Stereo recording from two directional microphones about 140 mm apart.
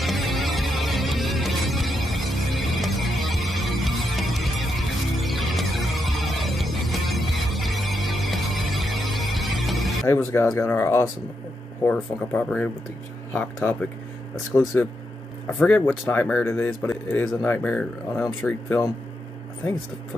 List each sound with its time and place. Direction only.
0.0 s music: centre (ahead or behind)
10.0 s speech: 20° left (ahead or behind)
11.9 s speech: 10° left (ahead or behind)
15.6 s speech: 10° left (ahead or behind)
18.4 s speech: 15° left (ahead or behind)